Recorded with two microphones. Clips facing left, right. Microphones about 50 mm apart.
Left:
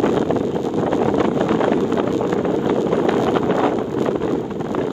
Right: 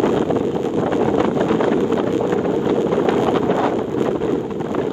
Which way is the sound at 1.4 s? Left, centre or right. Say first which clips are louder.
Even; left.